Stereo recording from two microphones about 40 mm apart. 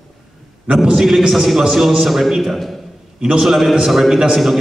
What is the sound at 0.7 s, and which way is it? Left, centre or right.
A man's voice, centre.